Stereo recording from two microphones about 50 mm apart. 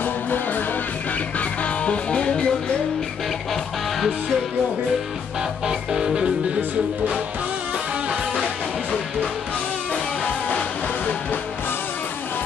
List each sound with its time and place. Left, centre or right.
0.0 s music: left
1.4 s music: left
5.7 s music: centre